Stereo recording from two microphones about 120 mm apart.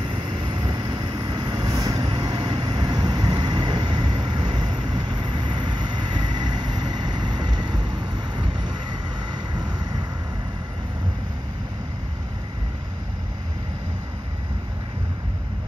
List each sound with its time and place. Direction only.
0.1 s vehicle: 40° right (ahead or behind)